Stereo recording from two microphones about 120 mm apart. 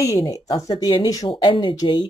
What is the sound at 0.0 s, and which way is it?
Speech, 30° left (ahead or behind).